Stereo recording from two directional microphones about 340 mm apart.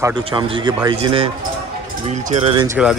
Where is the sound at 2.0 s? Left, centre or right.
Centre.